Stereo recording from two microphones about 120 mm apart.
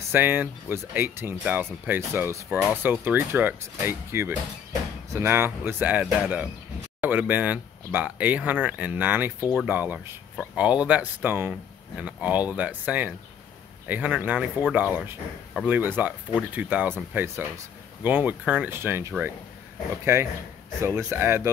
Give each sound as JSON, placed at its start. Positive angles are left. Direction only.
{"t": 0.1, "sound": "speech", "side_deg": -15}